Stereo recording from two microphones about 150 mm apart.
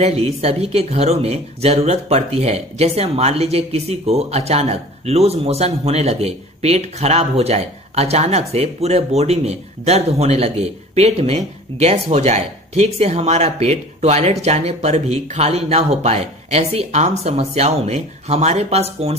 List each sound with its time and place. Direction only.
0.0 s speech: 45° right (ahead or behind)